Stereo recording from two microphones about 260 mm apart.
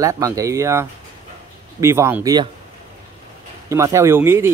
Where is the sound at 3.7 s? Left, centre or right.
Centre.